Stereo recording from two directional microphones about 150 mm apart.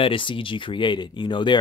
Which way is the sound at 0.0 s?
35° left (ahead or behind).